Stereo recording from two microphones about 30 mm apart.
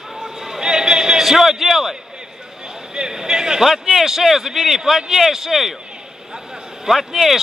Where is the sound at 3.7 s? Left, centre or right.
Centre.